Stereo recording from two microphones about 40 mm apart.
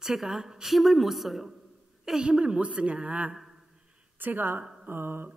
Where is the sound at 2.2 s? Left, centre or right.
Right.